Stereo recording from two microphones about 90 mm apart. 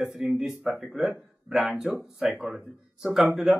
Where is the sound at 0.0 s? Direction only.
5° right (ahead or behind).